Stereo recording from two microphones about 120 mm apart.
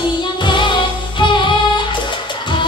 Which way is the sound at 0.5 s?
40° left (ahead or behind).